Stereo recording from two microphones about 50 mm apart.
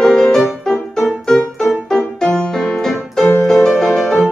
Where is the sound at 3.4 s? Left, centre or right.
Centre.